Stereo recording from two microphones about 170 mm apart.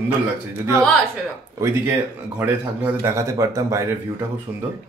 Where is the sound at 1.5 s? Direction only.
15° right (ahead or behind).